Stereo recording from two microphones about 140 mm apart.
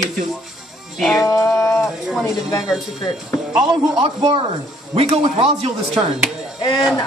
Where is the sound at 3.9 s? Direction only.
40° right (ahead or behind).